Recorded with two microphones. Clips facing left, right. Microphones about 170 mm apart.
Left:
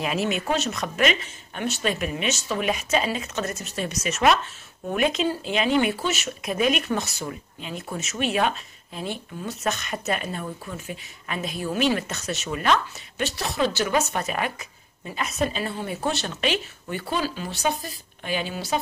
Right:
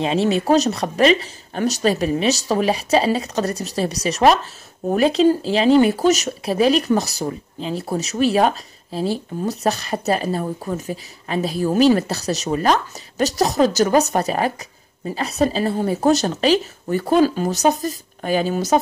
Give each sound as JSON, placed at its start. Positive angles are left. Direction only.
{"t": 0.0, "sound": "speech", "side_deg": -30}